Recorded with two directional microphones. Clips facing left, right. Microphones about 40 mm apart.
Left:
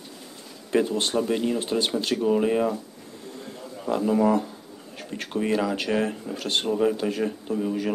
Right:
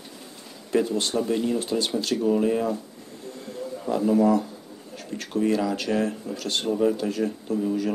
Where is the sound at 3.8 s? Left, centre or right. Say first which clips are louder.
Right 1 dB; left.